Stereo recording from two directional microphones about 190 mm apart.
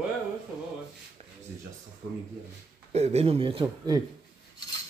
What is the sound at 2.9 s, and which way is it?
Speech, 35° right (ahead or behind).